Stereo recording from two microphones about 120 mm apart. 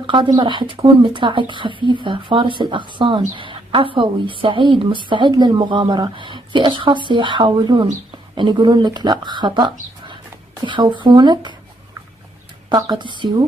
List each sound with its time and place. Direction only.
0.0 s speech: 45° right (ahead or behind)
12.6 s a woman's voice: 35° right (ahead or behind)